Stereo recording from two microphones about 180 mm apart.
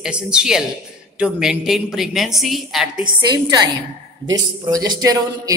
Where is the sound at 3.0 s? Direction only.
25° right (ahead or behind).